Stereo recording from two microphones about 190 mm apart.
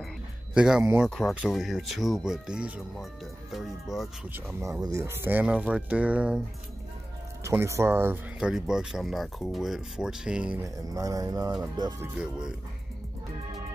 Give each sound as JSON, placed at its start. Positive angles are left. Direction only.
{"t": 0.6, "sound": "speech", "side_deg": -5}
{"t": 4.8, "sound": "speech", "side_deg": -15}
{"t": 7.4, "sound": "speech", "side_deg": -15}
{"t": 10.6, "sound": "speech", "side_deg": -20}
{"t": 12.2, "sound": "speech", "side_deg": -5}